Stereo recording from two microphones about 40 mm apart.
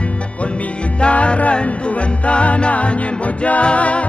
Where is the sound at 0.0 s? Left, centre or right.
Left.